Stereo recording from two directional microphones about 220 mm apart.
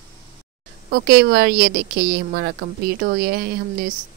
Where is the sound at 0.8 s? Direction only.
45° right (ahead or behind).